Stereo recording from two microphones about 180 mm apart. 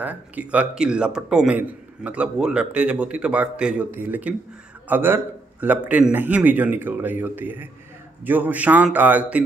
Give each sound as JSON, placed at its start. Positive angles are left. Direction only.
{"t": 0.0, "sound": "a man's voice", "side_deg": -10}